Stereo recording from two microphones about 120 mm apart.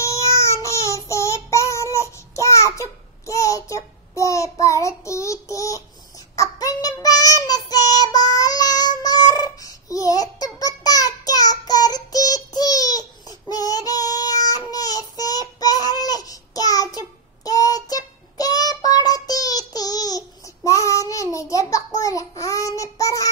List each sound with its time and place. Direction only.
0.0 s child singing: 25° left (ahead or behind)